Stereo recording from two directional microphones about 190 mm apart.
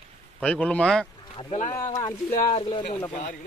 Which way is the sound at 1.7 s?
20° left (ahead or behind).